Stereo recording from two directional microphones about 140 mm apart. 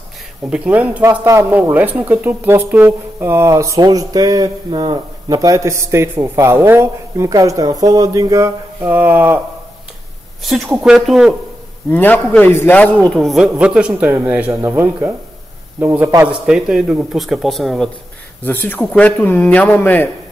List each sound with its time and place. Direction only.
0.5 s speech: 10° right (ahead or behind)
10.4 s a man's voice: centre (ahead or behind)
11.9 s a man's voice: 15° left (ahead or behind)
18.4 s speech: 15° left (ahead or behind)